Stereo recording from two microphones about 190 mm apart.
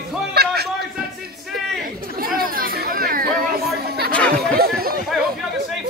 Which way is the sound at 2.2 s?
50° right (ahead or behind).